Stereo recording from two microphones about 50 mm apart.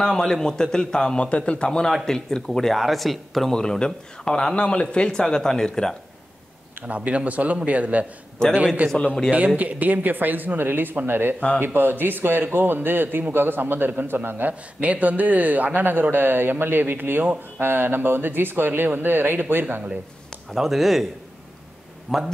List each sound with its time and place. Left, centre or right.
0.0 s a man's voice: centre
3.5 s a man's voice: centre
6.9 s speech: right
11.3 s speech: left
11.6 s speech: right
14.8 s speech: right
19.6 s speech: right
20.5 s speech: centre
22.1 s speech: centre